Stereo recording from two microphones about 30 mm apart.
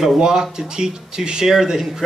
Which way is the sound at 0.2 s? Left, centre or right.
Centre.